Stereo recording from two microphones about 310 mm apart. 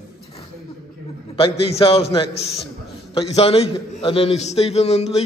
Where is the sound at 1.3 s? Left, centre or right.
Centre.